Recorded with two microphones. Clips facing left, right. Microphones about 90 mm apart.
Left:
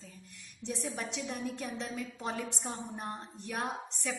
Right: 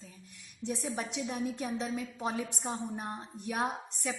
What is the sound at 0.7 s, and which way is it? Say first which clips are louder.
A woman's voice: right 2 dB; 5° right (ahead or behind).